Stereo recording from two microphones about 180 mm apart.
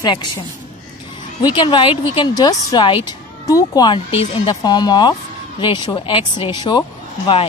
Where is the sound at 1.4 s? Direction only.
25° left (ahead or behind).